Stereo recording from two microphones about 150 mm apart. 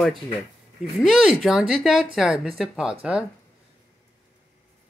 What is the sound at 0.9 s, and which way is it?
Speech, centre (ahead or behind).